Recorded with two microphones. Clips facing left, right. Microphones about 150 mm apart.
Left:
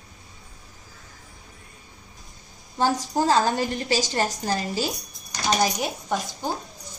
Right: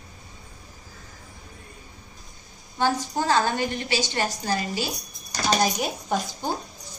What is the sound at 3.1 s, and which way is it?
A woman's voice, 35° left (ahead or behind).